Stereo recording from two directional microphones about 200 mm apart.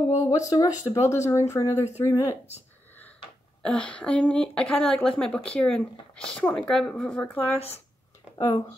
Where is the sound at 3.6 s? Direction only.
5° left (ahead or behind).